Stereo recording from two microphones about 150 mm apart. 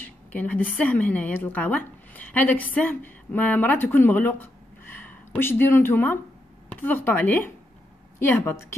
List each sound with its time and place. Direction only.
0.0 s a woman's voice: 10° left (ahead or behind)